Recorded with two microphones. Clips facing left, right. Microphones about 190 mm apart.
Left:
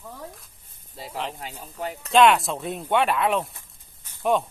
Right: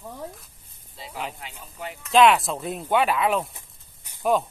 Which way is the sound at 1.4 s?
40° left (ahead or behind).